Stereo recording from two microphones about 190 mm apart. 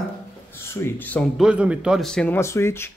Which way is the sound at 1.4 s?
5° right (ahead or behind).